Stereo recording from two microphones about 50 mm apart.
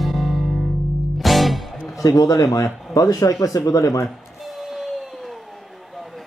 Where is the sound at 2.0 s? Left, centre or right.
Left.